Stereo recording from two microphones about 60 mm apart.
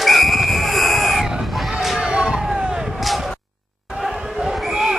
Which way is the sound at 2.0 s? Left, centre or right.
Centre.